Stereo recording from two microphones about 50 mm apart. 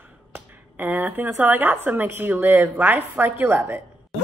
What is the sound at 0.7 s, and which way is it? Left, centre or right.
A woman's voice, right.